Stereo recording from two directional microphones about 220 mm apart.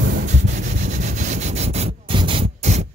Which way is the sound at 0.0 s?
45° right (ahead or behind).